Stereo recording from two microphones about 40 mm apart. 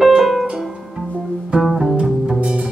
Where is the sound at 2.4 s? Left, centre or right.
Right.